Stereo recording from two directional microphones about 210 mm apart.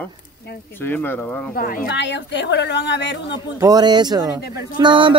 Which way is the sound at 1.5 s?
45° left (ahead or behind).